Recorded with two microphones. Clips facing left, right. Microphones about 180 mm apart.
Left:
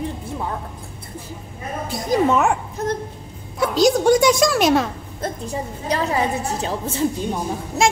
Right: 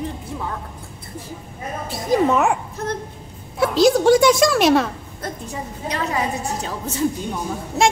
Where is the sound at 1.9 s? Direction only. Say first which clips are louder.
Even; centre (ahead or behind).